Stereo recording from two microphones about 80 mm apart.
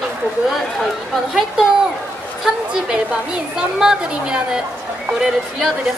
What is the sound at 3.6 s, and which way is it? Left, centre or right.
Speech, centre.